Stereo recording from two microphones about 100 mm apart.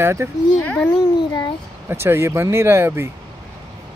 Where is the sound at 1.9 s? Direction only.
25° right (ahead or behind).